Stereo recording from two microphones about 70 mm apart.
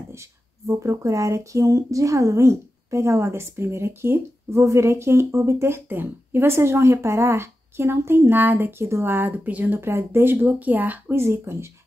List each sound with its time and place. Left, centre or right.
0.1 s speech: right
9.8 s speech: right
11.1 s speech: right